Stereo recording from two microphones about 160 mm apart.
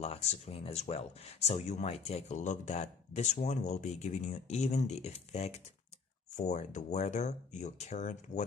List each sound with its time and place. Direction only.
0.0 s speech: 40° left (ahead or behind)